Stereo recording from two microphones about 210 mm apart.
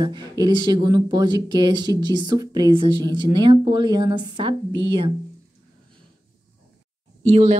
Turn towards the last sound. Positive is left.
turn(degrees=-35)  # may be behind; listen again after turning